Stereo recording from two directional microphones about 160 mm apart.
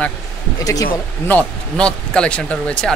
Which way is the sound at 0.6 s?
20° left (ahead or behind).